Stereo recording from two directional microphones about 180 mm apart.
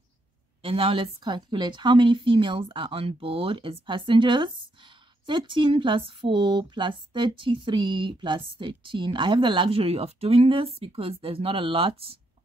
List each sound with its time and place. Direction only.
0.6 s a woman's voice: 30° right (ahead or behind)